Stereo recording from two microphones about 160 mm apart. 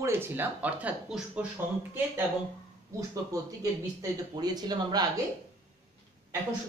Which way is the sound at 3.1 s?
20° right (ahead or behind).